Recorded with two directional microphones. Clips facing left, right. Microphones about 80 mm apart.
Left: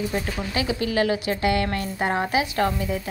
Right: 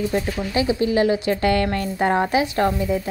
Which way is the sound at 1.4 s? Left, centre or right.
Right.